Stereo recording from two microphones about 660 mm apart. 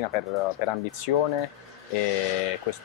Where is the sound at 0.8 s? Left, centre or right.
Left.